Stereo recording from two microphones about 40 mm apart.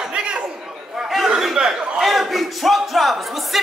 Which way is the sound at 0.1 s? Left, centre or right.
Right.